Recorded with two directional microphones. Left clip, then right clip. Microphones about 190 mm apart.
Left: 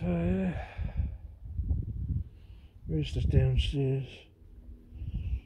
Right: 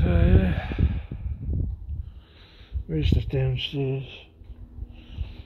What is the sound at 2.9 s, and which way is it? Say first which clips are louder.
Speech: right 6 dB; 10° left (ahead or behind).